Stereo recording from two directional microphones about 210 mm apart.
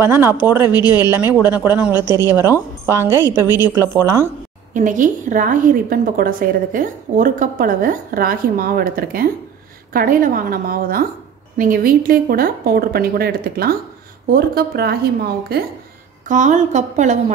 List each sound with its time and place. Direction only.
0.0 s speech: 10° right (ahead or behind)
4.7 s a woman's voice: 35° right (ahead or behind)
16.3 s a woman's voice: 35° right (ahead or behind)